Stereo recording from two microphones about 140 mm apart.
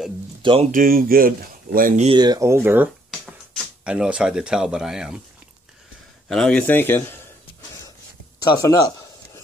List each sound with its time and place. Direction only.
0.4 s speech: 35° right (ahead or behind)
0.7 s speech: 85° right
2.1 s speech: 30° right (ahead or behind)
3.1 s music: centre (ahead or behind)
3.9 s speech: 5° right (ahead or behind)
6.2 s speech: 5° left (ahead or behind)
6.6 s speech: 15° left (ahead or behind)
8.4 s speech: 25° left (ahead or behind)